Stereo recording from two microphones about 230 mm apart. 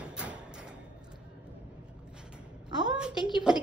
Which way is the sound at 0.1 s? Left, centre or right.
Centre.